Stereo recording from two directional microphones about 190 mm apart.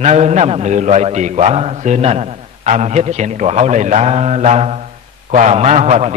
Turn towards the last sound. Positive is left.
turn(degrees=-35)  # may be behind; listen again after turning